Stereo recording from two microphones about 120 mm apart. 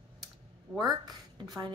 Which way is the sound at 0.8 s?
35° right (ahead or behind).